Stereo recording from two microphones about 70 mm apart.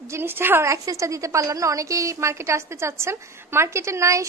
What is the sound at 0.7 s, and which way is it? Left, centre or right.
A woman's voice, right.